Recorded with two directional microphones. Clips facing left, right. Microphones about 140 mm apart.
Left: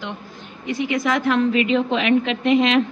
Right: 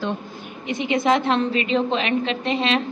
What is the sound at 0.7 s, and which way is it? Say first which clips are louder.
A woman's voice: right 2 dB; 25° right (ahead or behind).